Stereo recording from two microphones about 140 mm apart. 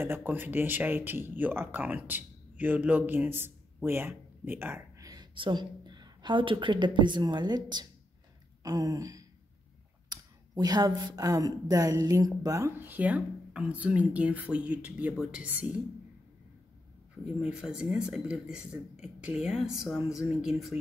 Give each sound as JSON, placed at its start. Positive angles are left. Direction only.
{"t": 0.0, "sound": "speech", "side_deg": -15}
{"t": 5.0, "sound": "speech", "side_deg": -30}
{"t": 8.6, "sound": "a sound", "side_deg": -25}
{"t": 10.0, "sound": "speech", "side_deg": -30}
{"t": 17.4, "sound": "speech", "side_deg": -5}